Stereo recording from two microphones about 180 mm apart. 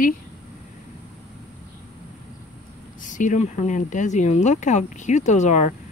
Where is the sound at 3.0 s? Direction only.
45° left (ahead or behind).